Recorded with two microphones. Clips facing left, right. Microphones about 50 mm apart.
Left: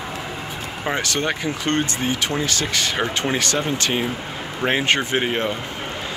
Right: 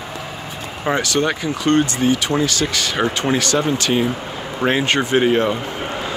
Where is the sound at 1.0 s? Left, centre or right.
Left.